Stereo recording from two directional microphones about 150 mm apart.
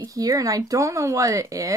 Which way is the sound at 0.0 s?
25° right (ahead or behind).